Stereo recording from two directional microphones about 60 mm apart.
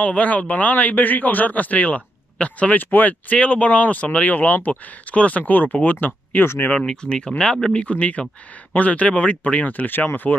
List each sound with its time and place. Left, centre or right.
0.0 s a man's voice: left
6.4 s speech: left
6.9 s a man's voice: centre; by 10.3 s left